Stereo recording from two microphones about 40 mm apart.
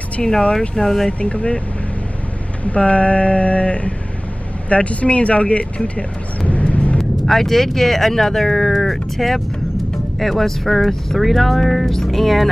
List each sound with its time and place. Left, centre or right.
0.2 s speech: centre
1.2 s speech: left
2.6 s speech: left
5.9 s vehicle: left
7.2 s speech: centre